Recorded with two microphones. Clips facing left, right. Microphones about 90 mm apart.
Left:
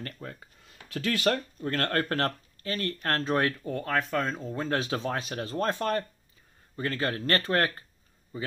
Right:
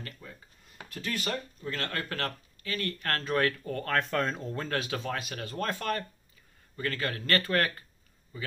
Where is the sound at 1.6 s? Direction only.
50° left (ahead or behind); by 3.9 s 20° left (ahead or behind).